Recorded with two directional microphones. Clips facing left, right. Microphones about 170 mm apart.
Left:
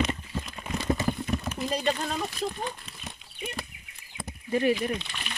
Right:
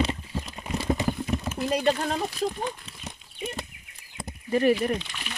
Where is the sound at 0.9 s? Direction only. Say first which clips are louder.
Right 1 dB; 20° right (ahead or behind).